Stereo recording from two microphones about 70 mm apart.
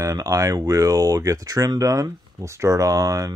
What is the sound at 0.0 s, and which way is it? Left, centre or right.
Speech, right.